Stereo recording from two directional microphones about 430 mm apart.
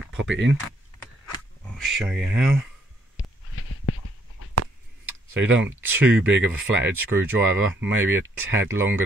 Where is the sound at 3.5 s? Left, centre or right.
Left.